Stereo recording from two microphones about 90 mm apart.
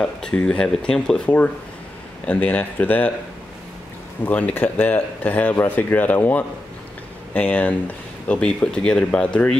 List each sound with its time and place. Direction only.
0.0 s speech: 10° left (ahead or behind)
4.2 s speech: 15° left (ahead or behind)